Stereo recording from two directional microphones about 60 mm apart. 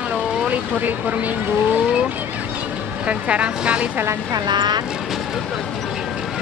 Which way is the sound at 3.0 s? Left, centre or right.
Centre.